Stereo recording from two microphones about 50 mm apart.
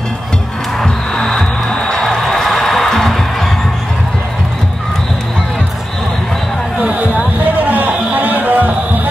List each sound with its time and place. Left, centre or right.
0.7 s music: centre
6.8 s a sound: right
7.7 s music: right